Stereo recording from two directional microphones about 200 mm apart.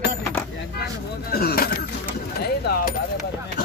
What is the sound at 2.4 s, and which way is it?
Speech, 55° left (ahead or behind).